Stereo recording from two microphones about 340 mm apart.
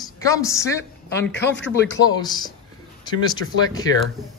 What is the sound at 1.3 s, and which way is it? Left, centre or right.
Speech, left.